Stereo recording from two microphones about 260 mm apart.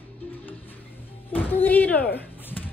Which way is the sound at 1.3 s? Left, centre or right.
Centre.